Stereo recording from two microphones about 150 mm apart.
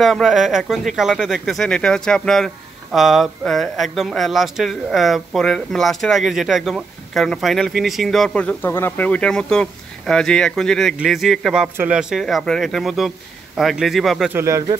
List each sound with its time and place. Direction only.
0.0 s speech: centre (ahead or behind)
14.3 s speech: 20° right (ahead or behind)